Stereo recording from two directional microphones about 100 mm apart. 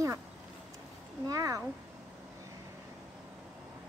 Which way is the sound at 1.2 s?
35° right (ahead or behind).